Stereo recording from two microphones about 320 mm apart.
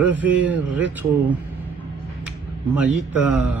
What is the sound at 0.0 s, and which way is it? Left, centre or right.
Speech, centre.